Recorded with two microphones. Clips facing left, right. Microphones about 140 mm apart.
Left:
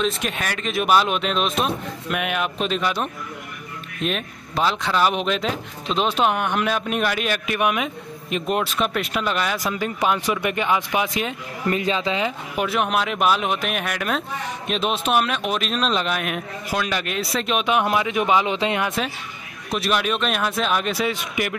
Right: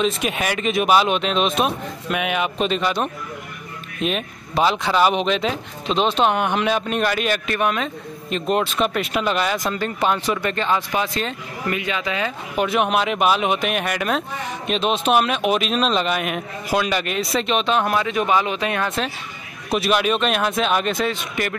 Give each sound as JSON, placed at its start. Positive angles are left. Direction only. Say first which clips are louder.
{"t": 0.0, "sound": "speech", "louder": "right 3 dB", "side_deg": -5}
{"t": 11.7, "sound": "speech", "louder": "left 3 dB", "side_deg": 30}
{"t": 12.5, "sound": "speech", "louder": "right 3 dB", "side_deg": 0}
{"t": 19.7, "sound": "speech", "louder": "right 3 dB", "side_deg": 0}